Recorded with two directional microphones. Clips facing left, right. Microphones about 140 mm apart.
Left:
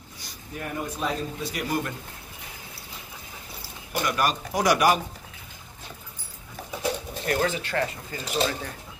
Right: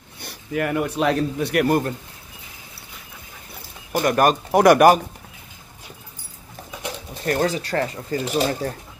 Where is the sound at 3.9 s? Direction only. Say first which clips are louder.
Right 8 dB; 50° right (ahead or behind).